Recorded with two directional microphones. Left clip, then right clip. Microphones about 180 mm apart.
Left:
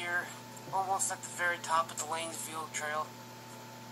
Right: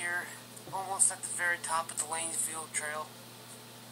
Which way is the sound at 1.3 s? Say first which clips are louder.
Left 2 dB; 20° left (ahead or behind).